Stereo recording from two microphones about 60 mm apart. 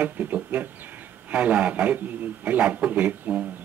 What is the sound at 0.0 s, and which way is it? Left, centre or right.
A man's voice, right.